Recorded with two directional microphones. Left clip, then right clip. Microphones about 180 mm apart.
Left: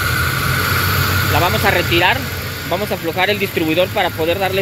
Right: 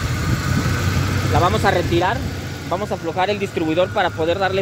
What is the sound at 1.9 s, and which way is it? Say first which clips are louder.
Speech: left 5 dB; 5° left (ahead or behind).